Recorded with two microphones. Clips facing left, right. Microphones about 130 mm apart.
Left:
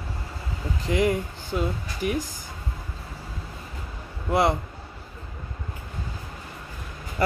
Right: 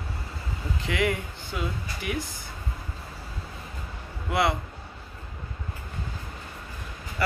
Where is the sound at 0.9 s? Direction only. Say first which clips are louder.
Left 4 dB; 35° left (ahead or behind).